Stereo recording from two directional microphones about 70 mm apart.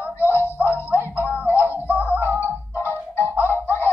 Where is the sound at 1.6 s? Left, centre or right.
Left.